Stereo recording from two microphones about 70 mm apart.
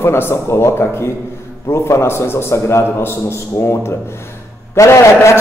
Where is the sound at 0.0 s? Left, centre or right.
Left.